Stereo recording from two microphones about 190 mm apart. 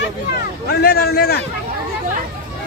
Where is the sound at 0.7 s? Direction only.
55° left (ahead or behind).